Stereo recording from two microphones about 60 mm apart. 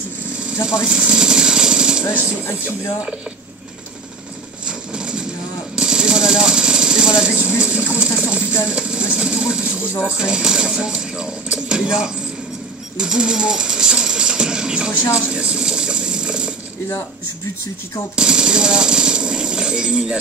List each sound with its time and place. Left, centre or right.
0.8 s jackhammer: centre
2.1 s speech: right
4.6 s horse: centre
5.8 s vehicle: centre
8.0 s a sound: centre
10.1 s speech: centre
15.3 s a sound: centre
18.1 s speech: centre